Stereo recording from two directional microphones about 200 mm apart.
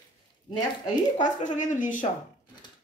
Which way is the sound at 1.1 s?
40° left (ahead or behind).